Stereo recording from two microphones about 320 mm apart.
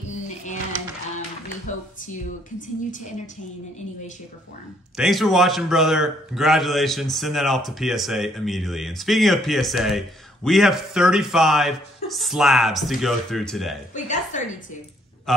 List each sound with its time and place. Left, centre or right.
4.9 s a man's voice: centre
13.9 s a woman's voice: left
15.3 s a man's voice: centre